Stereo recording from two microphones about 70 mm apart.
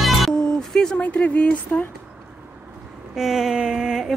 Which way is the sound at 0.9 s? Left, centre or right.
Centre.